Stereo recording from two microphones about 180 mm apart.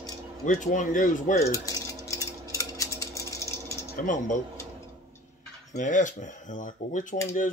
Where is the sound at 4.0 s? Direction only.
50° left (ahead or behind).